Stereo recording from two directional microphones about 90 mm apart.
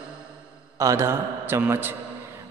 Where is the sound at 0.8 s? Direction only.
35° right (ahead or behind).